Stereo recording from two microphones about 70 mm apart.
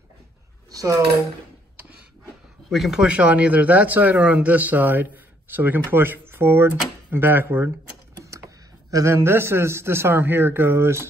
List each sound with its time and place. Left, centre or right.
0.7 s dishes: right
2.7 s speech: centre
3.0 s a man's voice: centre
8.9 s a man's voice: right